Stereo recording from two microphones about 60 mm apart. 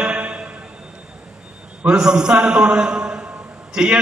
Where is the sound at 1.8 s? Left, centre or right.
Centre.